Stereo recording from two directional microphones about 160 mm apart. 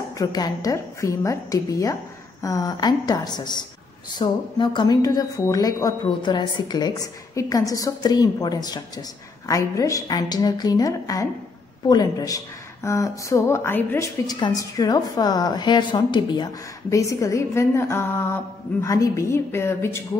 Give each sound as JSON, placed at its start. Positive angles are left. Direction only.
{"t": 0.2, "sound": "a woman's voice", "side_deg": 25}